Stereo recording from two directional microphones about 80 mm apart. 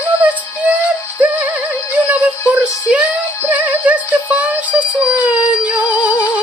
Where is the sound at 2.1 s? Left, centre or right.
Centre.